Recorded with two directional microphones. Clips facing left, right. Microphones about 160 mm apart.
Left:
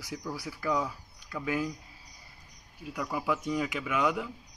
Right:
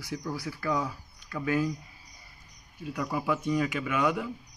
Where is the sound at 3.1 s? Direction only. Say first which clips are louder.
Right 2 dB; 10° left (ahead or behind).